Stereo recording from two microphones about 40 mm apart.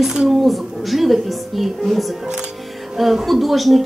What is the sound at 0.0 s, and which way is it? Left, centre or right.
A woman's voice, centre.